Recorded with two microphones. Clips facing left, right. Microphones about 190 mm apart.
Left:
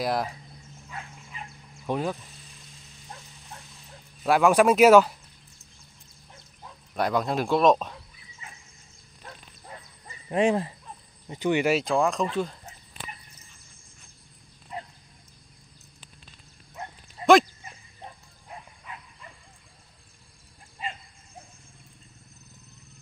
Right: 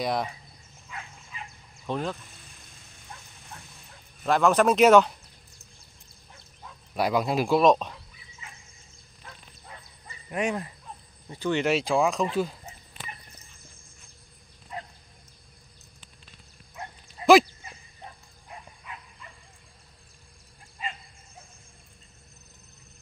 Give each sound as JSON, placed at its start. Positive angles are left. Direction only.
{"t": 0.0, "sound": "speech", "side_deg": 0}
{"t": 1.9, "sound": "speech", "side_deg": 10}
{"t": 4.2, "sound": "speech", "side_deg": 10}
{"t": 7.0, "sound": "speech", "side_deg": -5}
{"t": 10.3, "sound": "speech", "side_deg": 30}
{"t": 11.2, "sound": "speech", "side_deg": 15}
{"t": 12.4, "sound": "a sound", "side_deg": -5}